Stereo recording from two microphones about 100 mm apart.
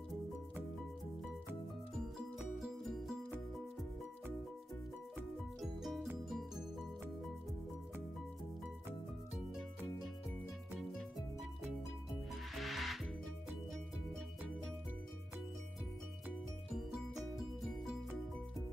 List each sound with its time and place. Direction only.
2.1 s music: 5° right (ahead or behind)
5.6 s music: centre (ahead or behind)
12.1 s music: centre (ahead or behind)
16.7 s music: 5° right (ahead or behind)